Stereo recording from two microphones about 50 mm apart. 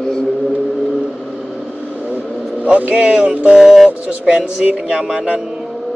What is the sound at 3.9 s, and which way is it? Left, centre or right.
Mantra, right.